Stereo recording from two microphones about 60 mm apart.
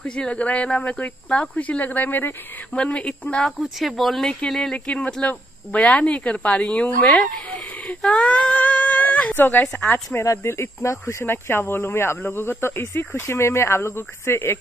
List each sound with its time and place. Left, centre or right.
0.0 s speech: centre
2.7 s speech: centre
3.6 s speech: centre
4.8 s speech: centre
10.2 s speech: left
11.2 s speech: left